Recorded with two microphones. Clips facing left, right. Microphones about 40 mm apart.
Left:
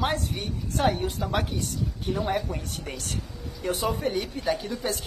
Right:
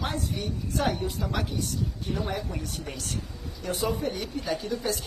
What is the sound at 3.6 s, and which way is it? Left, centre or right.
Speech, left.